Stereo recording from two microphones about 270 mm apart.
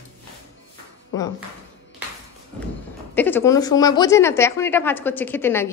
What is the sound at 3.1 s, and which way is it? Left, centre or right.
A woman's voice, centre.